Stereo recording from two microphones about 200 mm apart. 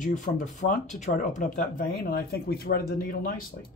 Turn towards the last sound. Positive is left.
turn(degrees=50)  # may be behind; listen again after turning